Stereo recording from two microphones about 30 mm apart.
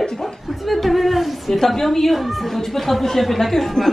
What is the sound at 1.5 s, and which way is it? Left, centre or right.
Speech, centre.